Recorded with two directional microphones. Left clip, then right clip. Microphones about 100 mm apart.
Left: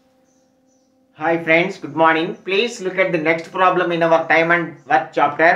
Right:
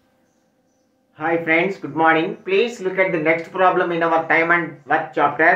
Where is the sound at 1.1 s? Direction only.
25° left (ahead or behind).